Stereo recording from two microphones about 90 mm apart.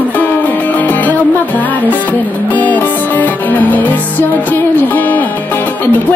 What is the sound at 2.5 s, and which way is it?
Music, 20° left (ahead or behind).